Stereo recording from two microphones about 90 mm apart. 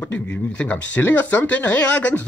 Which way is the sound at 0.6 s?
15° left (ahead or behind).